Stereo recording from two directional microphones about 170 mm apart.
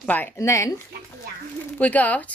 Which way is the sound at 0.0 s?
10° left (ahead or behind).